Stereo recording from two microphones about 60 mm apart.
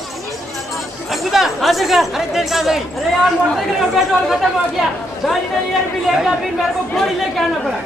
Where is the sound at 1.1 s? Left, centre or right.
Centre.